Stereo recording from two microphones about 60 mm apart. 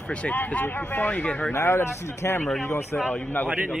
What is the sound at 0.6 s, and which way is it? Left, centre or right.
Speech, left.